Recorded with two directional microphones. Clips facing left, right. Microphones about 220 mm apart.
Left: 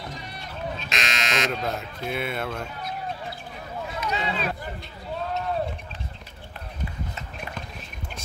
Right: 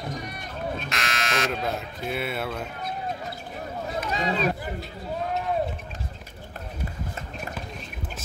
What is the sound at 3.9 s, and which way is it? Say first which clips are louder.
Speech: right 2 dB; 40° right (ahead or behind).